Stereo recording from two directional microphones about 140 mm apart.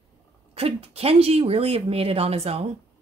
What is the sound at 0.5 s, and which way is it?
A woman's voice, 45° right (ahead or behind).